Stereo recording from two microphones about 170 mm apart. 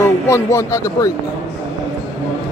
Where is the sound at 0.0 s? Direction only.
15° left (ahead or behind).